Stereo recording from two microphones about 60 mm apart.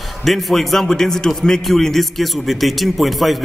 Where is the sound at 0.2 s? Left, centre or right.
Centre.